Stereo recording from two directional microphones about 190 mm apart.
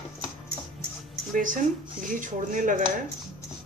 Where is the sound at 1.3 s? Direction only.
45° right (ahead or behind).